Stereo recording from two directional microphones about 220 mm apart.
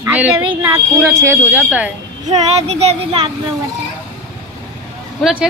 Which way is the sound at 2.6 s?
30° right (ahead or behind).